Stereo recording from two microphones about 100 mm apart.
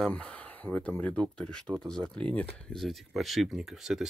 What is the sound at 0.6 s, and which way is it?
Speech, 20° right (ahead or behind).